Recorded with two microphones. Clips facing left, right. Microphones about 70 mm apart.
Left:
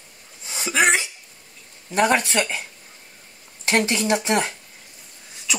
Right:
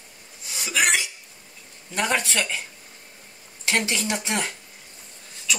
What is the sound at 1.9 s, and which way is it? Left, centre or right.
Speech, centre.